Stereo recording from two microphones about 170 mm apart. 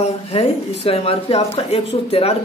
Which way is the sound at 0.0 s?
35° left (ahead or behind).